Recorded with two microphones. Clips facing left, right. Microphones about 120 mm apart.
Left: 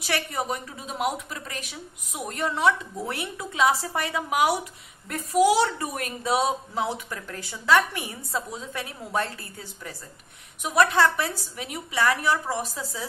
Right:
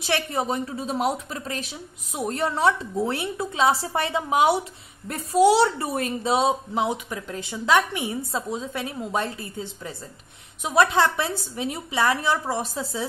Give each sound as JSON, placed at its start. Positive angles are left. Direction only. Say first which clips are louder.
{"t": 0.0, "sound": "a woman's voice", "louder": "right 3 dB", "side_deg": -25}